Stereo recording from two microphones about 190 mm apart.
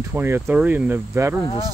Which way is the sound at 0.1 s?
10° right (ahead or behind).